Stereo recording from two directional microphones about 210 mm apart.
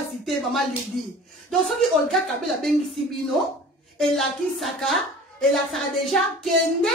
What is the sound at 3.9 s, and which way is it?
Speech, centre (ahead or behind).